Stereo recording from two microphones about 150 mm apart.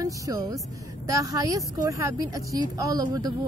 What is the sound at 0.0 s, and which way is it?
A woman's voice, 25° right (ahead or behind).